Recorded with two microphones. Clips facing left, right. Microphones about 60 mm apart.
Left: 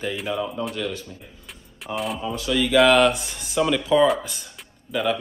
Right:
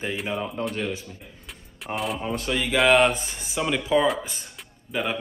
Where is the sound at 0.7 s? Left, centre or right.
Right.